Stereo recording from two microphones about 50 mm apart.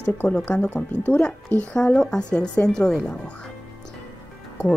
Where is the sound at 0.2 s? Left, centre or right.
Left.